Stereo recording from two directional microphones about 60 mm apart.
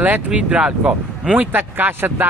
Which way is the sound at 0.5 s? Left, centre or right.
Centre.